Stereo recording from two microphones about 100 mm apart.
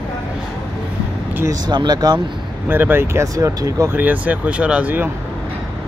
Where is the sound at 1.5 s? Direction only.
45° right (ahead or behind).